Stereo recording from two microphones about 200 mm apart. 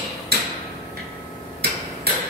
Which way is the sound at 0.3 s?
55° right (ahead or behind).